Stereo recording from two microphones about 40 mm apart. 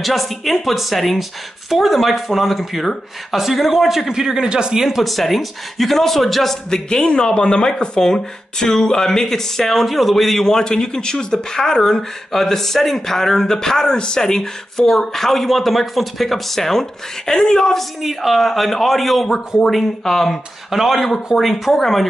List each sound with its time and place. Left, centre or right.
0.0 s speech: centre; by 4.7 s right
4.7 s speech: centre
6.7 s speech: centre
18.0 s speech: centre
20.7 s speech: centre